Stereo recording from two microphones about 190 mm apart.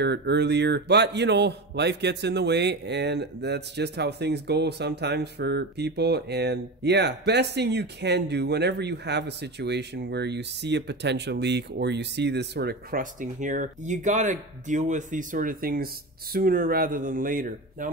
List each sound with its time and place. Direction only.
0.0 s a man's voice: 60° right (ahead or behind)